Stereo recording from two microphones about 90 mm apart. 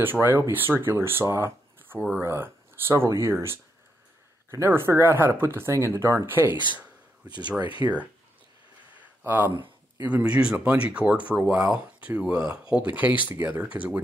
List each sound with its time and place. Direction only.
0.0 s speech: 20° right (ahead or behind)
2.2 s speech: 30° right (ahead or behind)
4.6 s speech: 25° right (ahead or behind)
7.8 s speech: 40° right (ahead or behind)
9.2 s speech: 20° right (ahead or behind)